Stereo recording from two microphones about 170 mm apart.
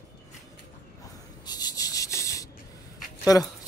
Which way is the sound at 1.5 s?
25° left (ahead or behind).